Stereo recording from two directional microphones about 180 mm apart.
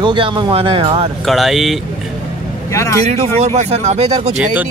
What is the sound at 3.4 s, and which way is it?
Speech, 40° right (ahead or behind).